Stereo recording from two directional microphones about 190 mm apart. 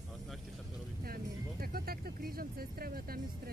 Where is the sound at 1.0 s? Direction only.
50° right (ahead or behind).